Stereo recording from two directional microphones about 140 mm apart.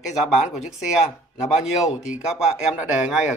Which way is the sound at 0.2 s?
Centre (ahead or behind).